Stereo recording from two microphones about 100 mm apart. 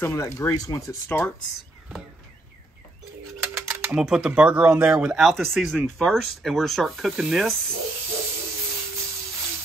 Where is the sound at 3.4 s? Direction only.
25° right (ahead or behind).